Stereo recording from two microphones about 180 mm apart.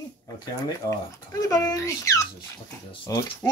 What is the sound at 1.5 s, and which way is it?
Speech, 20° left (ahead or behind).